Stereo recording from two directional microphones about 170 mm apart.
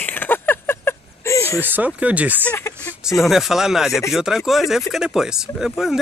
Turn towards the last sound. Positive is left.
turn(degrees=-5)  # may be behind; listen again after turning